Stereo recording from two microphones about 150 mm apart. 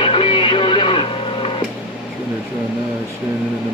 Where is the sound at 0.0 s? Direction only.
35° left (ahead or behind).